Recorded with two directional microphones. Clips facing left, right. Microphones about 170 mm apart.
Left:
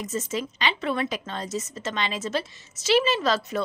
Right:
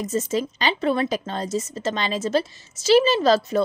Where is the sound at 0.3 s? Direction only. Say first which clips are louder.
Right 5 dB; 35° right (ahead or behind).